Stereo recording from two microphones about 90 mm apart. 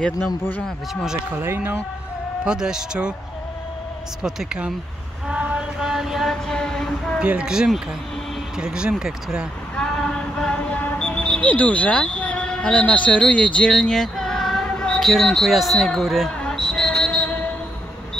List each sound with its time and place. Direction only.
0.5 s speech: 15° left (ahead or behind)
1.3 s speech: 20° right (ahead or behind)
2.4 s a man's voice: 10° right (ahead or behind)
4.2 s a man's voice: 10° right (ahead or behind)
5.3 s a sound: 15° right (ahead or behind); by 7.2 s 5° left (ahead or behind)
7.2 s a man's voice: 10° right (ahead or behind)
9.8 s a sound: 5° left (ahead or behind)